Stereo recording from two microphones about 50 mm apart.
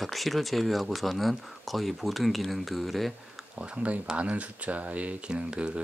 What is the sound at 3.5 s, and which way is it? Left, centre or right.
Speech, right.